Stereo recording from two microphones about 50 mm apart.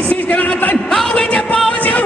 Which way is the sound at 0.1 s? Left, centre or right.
Left.